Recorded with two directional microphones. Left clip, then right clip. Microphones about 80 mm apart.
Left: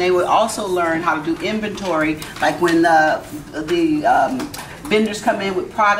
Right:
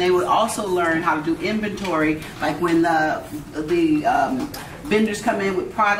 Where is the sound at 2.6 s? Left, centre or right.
Centre.